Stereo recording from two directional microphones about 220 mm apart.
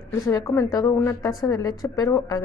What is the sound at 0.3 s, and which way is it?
A woman's voice, 10° left (ahead or behind).